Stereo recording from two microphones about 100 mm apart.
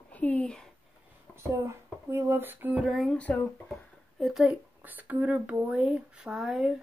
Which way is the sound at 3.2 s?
15° left (ahead or behind).